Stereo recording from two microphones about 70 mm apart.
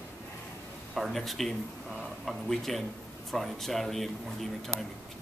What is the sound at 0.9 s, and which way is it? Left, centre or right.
Speech, centre.